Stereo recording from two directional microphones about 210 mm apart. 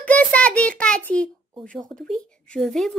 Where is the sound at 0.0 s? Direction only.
5° left (ahead or behind).